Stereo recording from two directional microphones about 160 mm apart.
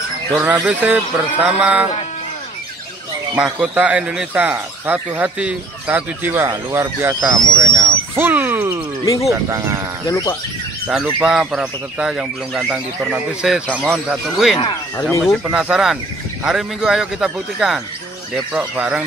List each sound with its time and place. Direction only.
0.3 s speech: 5° right (ahead or behind)
3.3 s speech: 5° right (ahead or behind)
10.0 s speech: 20° left (ahead or behind)
10.9 s speech: 5° right (ahead or behind)